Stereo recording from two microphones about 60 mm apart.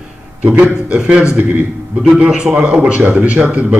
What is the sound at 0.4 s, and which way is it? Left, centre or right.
Speech, right.